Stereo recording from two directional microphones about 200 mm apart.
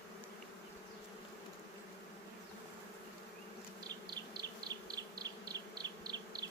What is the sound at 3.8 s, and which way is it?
Bee, 20° right (ahead or behind).